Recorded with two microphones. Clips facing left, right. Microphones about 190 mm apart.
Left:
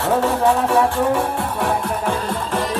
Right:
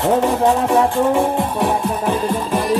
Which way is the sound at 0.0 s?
20° right (ahead or behind).